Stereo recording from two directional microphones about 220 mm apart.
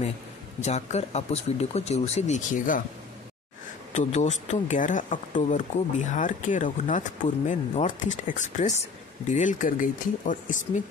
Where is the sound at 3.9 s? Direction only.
30° left (ahead or behind).